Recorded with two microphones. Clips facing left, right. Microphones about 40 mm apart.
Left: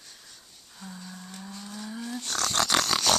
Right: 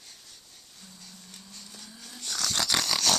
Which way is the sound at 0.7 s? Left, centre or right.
Left.